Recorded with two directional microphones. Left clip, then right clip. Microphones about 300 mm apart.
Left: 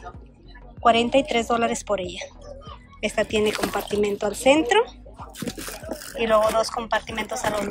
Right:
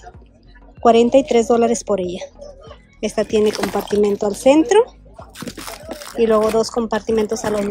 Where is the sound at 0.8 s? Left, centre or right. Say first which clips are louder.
Right 6 dB; centre.